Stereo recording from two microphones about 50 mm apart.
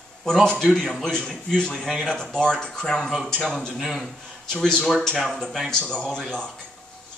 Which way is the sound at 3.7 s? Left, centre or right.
Centre.